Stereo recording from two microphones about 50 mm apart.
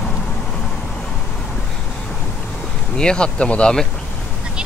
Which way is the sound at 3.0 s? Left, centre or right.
Centre.